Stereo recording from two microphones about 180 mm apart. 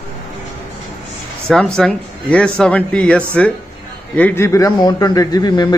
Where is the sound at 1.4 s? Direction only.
5° left (ahead or behind).